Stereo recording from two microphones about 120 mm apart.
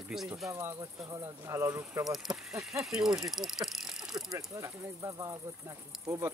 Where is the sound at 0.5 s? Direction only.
20° right (ahead or behind).